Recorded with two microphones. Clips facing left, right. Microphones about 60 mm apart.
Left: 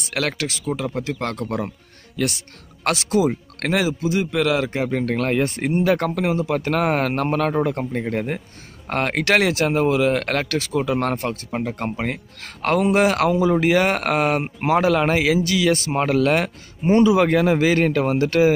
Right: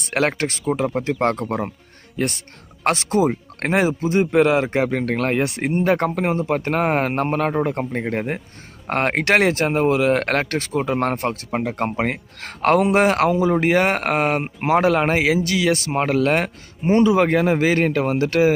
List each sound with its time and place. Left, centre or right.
0.1 s speech: right
3.8 s speech: right
6.5 s speech: right
7.9 s speech: right
15.9 s speech: right
17.3 s speech: right
17.6 s speech: right